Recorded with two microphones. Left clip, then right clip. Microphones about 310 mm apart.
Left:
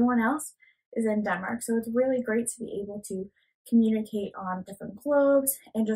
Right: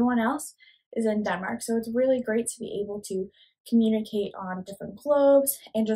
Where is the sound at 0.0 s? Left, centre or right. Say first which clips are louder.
Even; centre.